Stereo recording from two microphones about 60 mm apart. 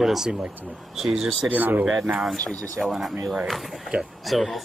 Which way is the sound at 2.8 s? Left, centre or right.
Centre.